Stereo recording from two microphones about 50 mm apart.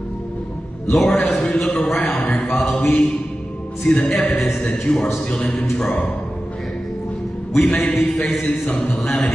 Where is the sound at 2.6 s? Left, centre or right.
Centre.